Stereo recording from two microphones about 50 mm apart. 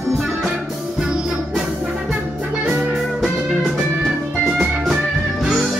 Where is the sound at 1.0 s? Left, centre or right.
Centre.